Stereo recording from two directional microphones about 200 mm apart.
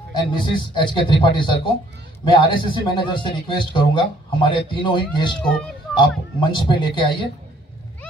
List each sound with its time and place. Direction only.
0.1 s a man's voice: 25° left (ahead or behind)